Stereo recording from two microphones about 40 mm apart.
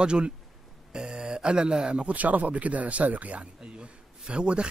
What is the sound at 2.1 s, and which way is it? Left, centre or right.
Speech, right.